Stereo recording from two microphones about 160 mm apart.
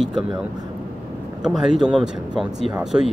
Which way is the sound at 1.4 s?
Centre (ahead or behind).